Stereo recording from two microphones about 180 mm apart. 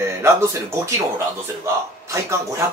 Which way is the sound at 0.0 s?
15° right (ahead or behind).